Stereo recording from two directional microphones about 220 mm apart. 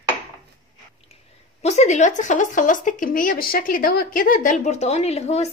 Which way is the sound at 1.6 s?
30° left (ahead or behind).